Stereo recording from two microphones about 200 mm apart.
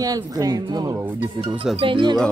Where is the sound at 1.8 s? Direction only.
25° right (ahead or behind).